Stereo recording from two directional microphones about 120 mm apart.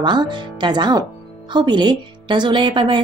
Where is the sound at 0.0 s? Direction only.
40° right (ahead or behind).